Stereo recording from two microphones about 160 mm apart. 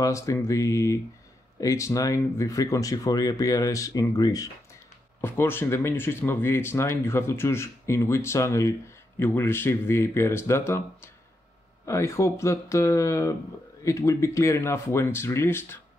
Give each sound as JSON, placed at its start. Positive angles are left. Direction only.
{"t": 0.0, "sound": "speech", "side_deg": 20}